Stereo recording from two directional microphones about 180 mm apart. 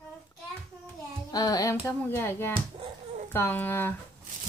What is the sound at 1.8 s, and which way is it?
Speech, 15° left (ahead or behind).